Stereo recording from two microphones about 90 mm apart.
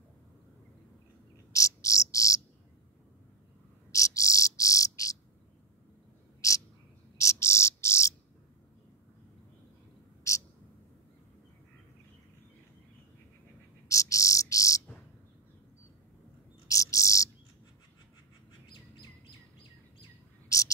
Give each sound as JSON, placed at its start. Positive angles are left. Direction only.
{"t": 1.5, "sound": "cricket", "side_deg": 35}
{"t": 3.9, "sound": "cricket", "side_deg": 40}
{"t": 7.2, "sound": "cricket", "side_deg": 35}
{"t": 13.8, "sound": "cricket", "side_deg": 35}
{"t": 16.6, "sound": "bird", "side_deg": 40}
{"t": 20.4, "sound": "whispering", "side_deg": 40}